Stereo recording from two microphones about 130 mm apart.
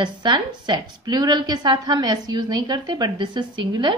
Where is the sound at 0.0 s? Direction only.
35° right (ahead or behind).